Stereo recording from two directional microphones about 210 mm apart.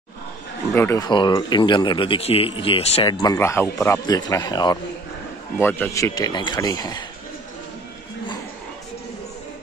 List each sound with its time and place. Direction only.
0.7 s speech: 15° left (ahead or behind)